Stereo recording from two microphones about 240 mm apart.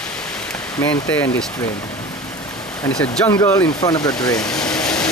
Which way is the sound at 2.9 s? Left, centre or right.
Centre.